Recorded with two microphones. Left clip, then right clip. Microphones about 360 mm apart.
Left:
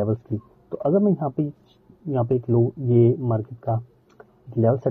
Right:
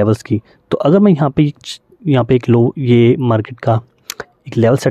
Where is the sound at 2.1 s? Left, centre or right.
Right.